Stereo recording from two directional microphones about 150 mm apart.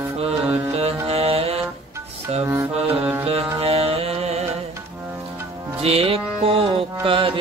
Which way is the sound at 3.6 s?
40° right (ahead or behind).